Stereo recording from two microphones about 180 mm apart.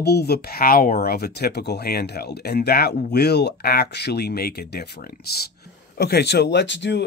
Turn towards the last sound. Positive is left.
turn(degrees=75)  # may be behind; listen again after turning